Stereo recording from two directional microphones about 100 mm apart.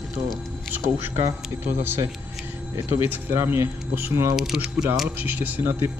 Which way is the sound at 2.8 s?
20° right (ahead or behind).